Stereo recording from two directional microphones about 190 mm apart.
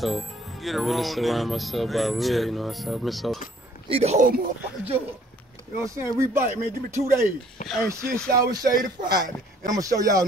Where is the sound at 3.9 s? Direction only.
35° right (ahead or behind).